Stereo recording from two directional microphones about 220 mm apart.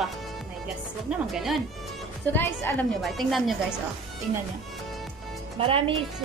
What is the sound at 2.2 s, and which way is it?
A woman's voice, 10° left (ahead or behind).